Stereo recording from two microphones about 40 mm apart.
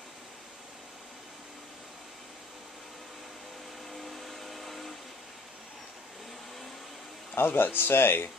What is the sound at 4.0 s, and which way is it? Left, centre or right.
Vehicle, centre.